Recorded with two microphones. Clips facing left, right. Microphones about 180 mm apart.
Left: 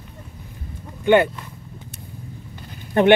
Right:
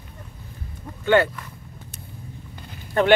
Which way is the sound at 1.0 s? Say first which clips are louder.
Left 3 dB; 20° left (ahead or behind).